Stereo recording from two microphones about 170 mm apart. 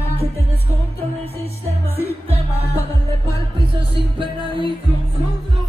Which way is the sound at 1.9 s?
70° left (ahead or behind).